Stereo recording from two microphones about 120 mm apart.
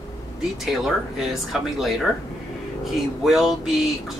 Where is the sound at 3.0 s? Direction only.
Centre (ahead or behind).